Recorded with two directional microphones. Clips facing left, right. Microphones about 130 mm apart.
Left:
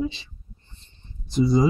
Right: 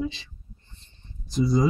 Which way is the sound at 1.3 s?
25° left (ahead or behind).